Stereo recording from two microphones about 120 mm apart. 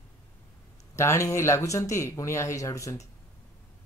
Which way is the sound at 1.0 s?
25° left (ahead or behind).